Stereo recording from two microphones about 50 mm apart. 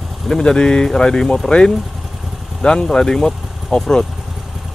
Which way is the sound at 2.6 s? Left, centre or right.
Centre.